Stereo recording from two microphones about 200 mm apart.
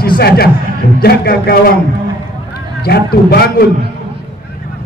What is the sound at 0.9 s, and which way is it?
Speech, 50° left (ahead or behind).